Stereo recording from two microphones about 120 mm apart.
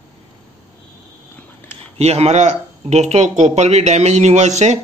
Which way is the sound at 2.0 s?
60° right (ahead or behind).